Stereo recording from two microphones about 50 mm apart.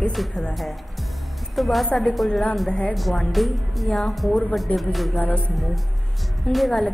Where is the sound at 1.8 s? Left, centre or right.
Centre.